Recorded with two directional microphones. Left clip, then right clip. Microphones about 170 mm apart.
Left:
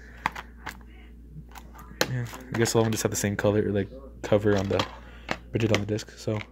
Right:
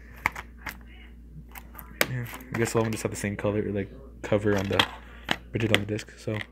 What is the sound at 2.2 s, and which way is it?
Speech, 5° left (ahead or behind).